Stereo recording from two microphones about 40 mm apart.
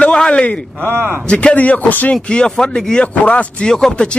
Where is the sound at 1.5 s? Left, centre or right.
Left.